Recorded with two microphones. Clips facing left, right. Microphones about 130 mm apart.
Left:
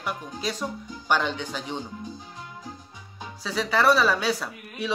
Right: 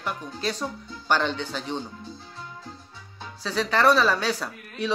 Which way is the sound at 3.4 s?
10° left (ahead or behind).